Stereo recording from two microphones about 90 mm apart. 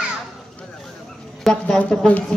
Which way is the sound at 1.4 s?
5° left (ahead or behind).